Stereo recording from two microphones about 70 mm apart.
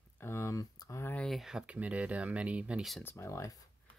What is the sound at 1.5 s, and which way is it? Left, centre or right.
Speech, centre.